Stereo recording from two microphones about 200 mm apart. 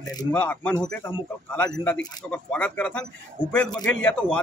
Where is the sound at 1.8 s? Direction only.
5° left (ahead or behind).